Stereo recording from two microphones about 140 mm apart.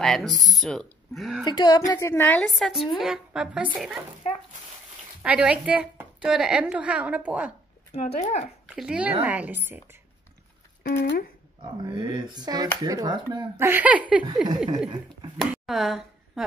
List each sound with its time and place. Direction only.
0.0 s speech: centre (ahead or behind)
1.4 s speech: 30° left (ahead or behind)
1.9 s a woman's voice: 20° left (ahead or behind)
2.4 s a woman's voice: centre (ahead or behind)
5.2 s a woman's voice: 10° right (ahead or behind)
7.9 s speech: 50° left (ahead or behind)
8.6 s a woman's voice: 5° right (ahead or behind)
10.8 s speech: 90° left
11.8 s speech: 30° right (ahead or behind)
13.6 s a woman's voice: 15° right (ahead or behind)
15.6 s a sound: centre (ahead or behind)